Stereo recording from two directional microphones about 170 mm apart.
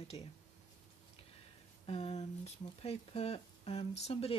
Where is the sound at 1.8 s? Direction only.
35° left (ahead or behind).